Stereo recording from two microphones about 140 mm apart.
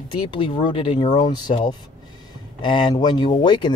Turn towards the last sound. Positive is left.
turn(degrees=30)  # may be behind; listen again after turning